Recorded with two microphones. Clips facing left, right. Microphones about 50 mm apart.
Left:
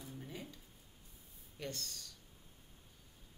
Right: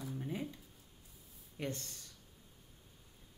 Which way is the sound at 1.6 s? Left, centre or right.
Right.